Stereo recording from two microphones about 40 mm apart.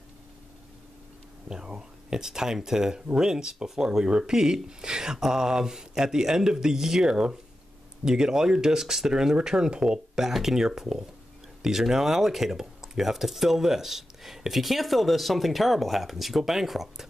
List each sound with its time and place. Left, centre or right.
1.5 s speech: centre